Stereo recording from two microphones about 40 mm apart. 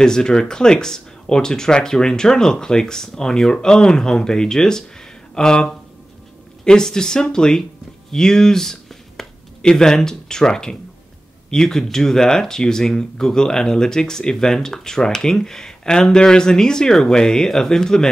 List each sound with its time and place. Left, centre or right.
0.0 s speech: centre
8.1 s a sound: centre
9.7 s speech: centre